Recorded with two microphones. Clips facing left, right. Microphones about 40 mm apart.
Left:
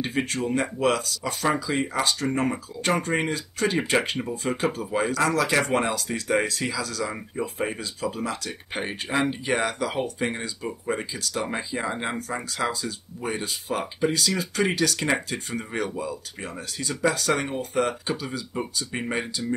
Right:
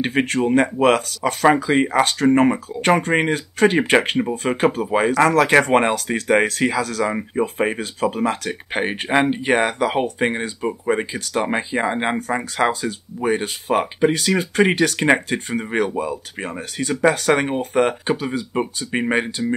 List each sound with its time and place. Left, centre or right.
0.0 s speech: right